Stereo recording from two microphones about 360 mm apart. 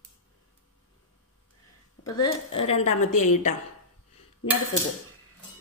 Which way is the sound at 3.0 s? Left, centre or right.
Left.